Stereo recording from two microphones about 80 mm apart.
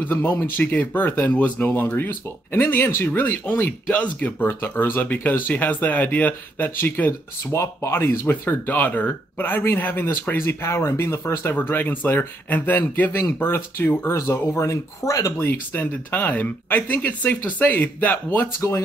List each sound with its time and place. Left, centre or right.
0.0 s speech: left
11.5 s speech: left
15.4 s speech: left